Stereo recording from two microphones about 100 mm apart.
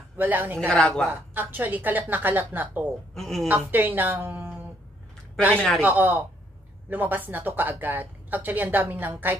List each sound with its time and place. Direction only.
0.2 s speech: 20° right (ahead or behind)
0.6 s a woman's voice: 5° left (ahead or behind)
1.3 s speech: 20° right (ahead or behind)
3.2 s a woman's voice: centre (ahead or behind)
3.4 s a woman's voice: 20° right (ahead or behind)
5.8 s speech: 20° right (ahead or behind)